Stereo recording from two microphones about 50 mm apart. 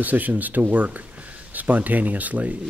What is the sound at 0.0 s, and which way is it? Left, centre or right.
Speech, right.